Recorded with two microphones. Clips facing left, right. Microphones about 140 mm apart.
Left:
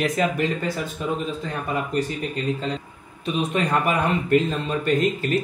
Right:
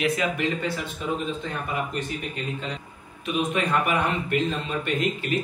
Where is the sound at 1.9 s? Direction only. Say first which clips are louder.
Left 6 dB; 35° left (ahead or behind).